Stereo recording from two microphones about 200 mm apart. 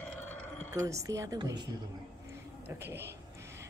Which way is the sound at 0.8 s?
15° right (ahead or behind).